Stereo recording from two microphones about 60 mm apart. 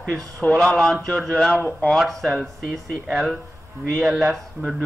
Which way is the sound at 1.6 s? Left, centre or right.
Centre.